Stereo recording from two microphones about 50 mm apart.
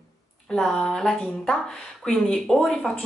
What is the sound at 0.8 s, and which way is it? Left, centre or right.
Speech, centre.